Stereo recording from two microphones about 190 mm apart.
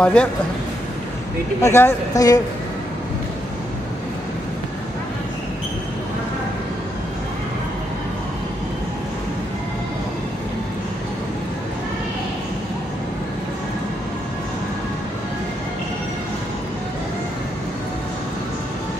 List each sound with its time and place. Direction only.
0.0 s a man's voice: 5° left (ahead or behind)
1.6 s a woman's voice: 15° left (ahead or behind)